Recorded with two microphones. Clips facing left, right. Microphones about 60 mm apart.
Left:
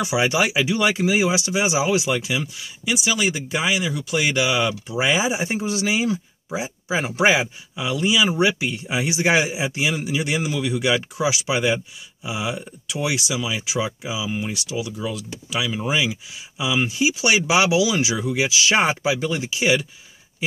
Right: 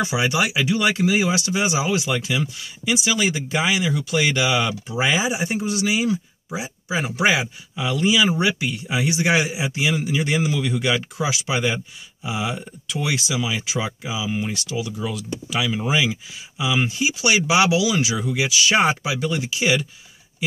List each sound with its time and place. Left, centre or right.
0.0 s speech: centre
5.0 s speech: centre
7.7 s speech: centre
8.4 s speech: centre